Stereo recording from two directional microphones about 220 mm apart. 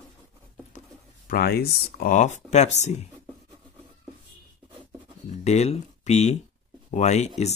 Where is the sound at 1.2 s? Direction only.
45° left (ahead or behind).